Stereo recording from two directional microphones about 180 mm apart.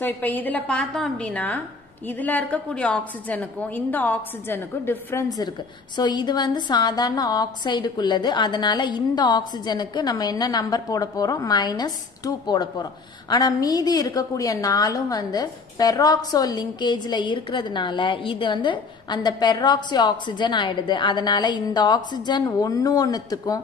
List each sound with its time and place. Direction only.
0.0 s a woman's voice: 10° left (ahead or behind)